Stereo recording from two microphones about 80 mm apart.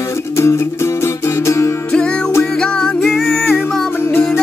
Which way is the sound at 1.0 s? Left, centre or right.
Left.